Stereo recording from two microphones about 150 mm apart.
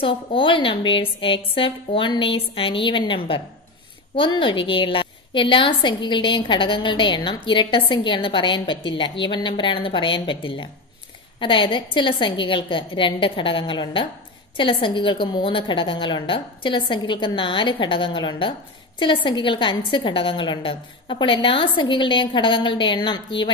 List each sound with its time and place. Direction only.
0.0 s a woman's voice: 35° left (ahead or behind)